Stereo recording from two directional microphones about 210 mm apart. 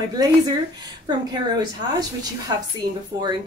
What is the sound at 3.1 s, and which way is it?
Speech, 20° right (ahead or behind).